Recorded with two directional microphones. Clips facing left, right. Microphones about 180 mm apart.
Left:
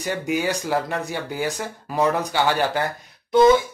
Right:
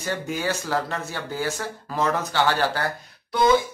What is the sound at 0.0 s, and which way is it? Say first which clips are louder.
Speech: left 3 dB; 15° left (ahead or behind).